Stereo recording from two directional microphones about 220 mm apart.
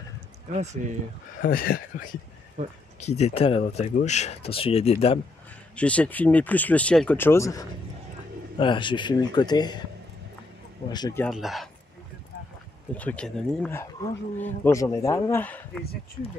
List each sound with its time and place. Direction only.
0.5 s speech: 30° right (ahead or behind)
1.4 s speech: 40° left (ahead or behind)
2.6 s speech: 35° right (ahead or behind)
3.0 s speech: 30° left (ahead or behind)
5.8 s speech: 5° left (ahead or behind)
10.9 s speech: 20° left (ahead or behind)
11.2 s speech: centre (ahead or behind)
12.9 s speech: 5° left (ahead or behind)